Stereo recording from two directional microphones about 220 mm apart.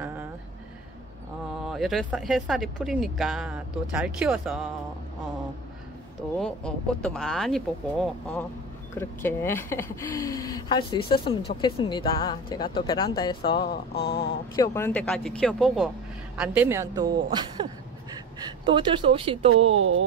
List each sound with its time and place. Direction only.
1.7 s speech: centre (ahead or behind)
6.3 s speech: 5° left (ahead or behind); by 13.7 s 25° left (ahead or behind)
13.7 s mantra: 45° left (ahead or behind)
14.5 s speech: 15° left (ahead or behind)
16.3 s a woman's voice: 10° right (ahead or behind)
18.7 s speech: 20° right (ahead or behind)
19.8 s music: 65° right (ahead or behind)